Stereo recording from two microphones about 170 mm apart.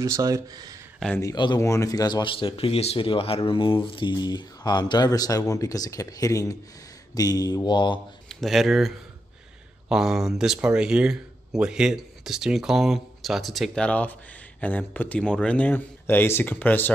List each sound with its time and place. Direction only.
0.0 s speech: 20° right (ahead or behind)
1.1 s speech: 20° left (ahead or behind)
8.3 s speech: centre (ahead or behind)